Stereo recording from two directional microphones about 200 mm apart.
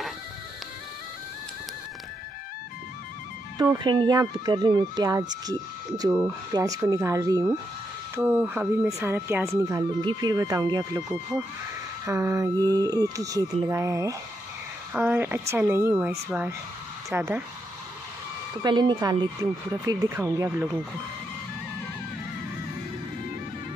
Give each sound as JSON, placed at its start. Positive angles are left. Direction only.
{"t": 3.5, "sound": "speech", "side_deg": -20}
{"t": 18.6, "sound": "speech", "side_deg": -20}